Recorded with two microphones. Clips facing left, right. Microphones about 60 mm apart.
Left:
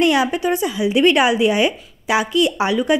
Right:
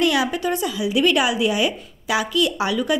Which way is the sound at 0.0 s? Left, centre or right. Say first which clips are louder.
Left 3 dB; left.